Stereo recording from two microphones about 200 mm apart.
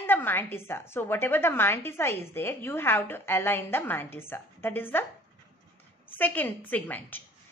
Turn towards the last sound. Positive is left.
turn(degrees=10)  # may be behind; listen again after turning